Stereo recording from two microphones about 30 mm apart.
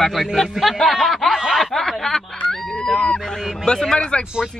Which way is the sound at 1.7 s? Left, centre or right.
Centre.